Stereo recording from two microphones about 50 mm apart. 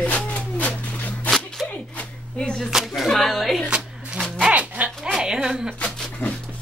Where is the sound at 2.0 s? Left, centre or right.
Centre.